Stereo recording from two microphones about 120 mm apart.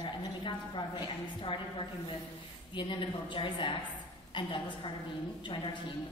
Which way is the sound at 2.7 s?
45° left (ahead or behind).